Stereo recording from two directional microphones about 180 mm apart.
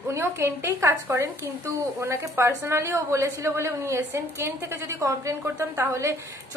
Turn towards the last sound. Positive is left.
turn(degrees=-15)  # may be behind; listen again after turning